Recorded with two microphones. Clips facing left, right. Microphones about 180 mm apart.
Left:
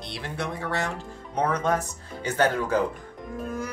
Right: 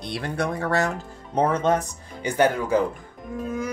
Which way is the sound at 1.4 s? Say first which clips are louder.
Right 3 dB; 25° right (ahead or behind).